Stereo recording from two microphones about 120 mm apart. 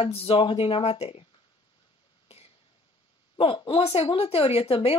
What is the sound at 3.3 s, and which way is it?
A woman's voice, 45° left (ahead or behind).